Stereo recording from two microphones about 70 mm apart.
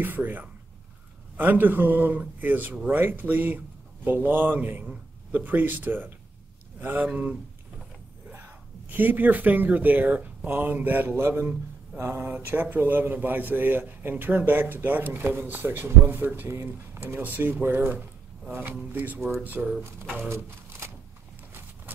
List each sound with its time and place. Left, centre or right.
0.0 s a man's voice: right
8.8 s a man's voice: right
20.2 s shuffling cards: right